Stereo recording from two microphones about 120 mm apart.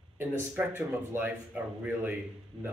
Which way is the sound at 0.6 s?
15° right (ahead or behind).